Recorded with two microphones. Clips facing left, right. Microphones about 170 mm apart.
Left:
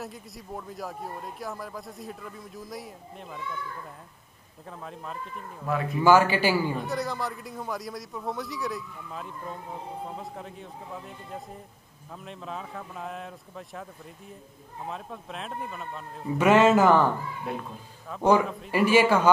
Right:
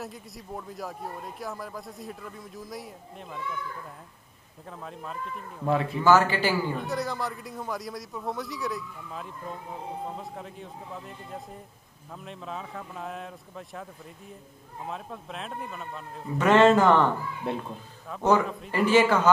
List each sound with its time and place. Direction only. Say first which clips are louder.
0.0 s speech: even; centre (ahead or behind)
4.6 s speech: even; centre (ahead or behind)
5.7 s speech: right 3 dB; 30° right (ahead or behind)
6.0 s a man's voice: left 2 dB; 10° left (ahead or behind)
6.8 s speech: even; centre (ahead or behind)
14.9 s speech: even; centre (ahead or behind)
17.5 s speech: right 3 dB; 30° right (ahead or behind)
18.7 s a man's voice: left 1 dB; 10° left (ahead or behind)